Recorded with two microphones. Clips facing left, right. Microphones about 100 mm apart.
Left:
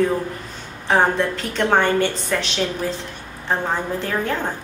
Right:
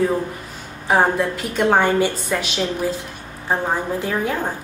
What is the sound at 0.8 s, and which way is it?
A woman's voice, 10° right (ahead or behind).